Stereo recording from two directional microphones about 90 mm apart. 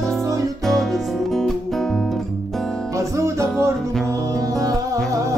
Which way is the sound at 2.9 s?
35° right (ahead or behind).